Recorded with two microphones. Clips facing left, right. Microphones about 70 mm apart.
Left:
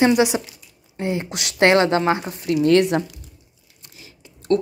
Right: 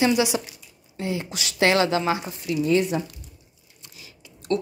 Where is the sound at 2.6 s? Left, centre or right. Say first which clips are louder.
Left 5 dB; left.